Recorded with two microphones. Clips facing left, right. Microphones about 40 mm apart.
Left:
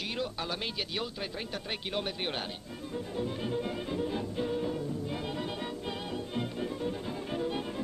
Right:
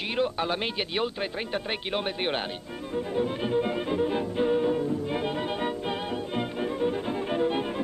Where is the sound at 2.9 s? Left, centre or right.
Right.